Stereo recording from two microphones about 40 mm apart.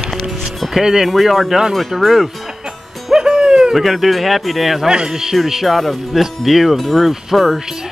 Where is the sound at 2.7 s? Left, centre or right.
Centre.